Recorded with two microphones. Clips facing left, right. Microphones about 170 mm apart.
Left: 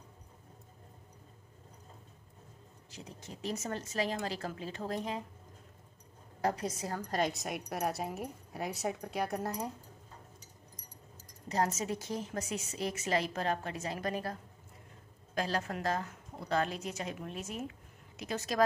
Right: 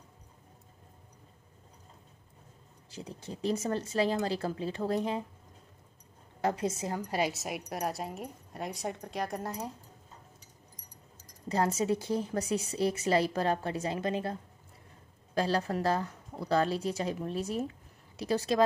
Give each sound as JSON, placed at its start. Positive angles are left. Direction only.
{"t": 2.9, "sound": "a woman's voice", "side_deg": -30}
{"t": 6.4, "sound": "a woman's voice", "side_deg": -25}
{"t": 7.0, "sound": "speech", "side_deg": -10}
{"t": 11.4, "sound": "a woman's voice", "side_deg": -30}